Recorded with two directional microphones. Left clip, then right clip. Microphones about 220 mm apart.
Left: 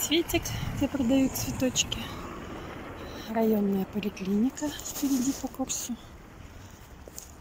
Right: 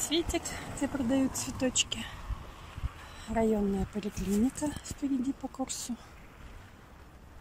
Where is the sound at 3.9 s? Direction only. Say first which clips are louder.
Left 2 dB; centre (ahead or behind).